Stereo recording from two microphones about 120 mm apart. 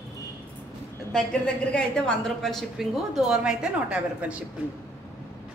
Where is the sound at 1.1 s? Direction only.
5° left (ahead or behind); by 4.4 s 10° right (ahead or behind).